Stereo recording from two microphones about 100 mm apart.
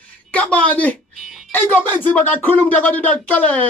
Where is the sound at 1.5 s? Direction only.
20° left (ahead or behind).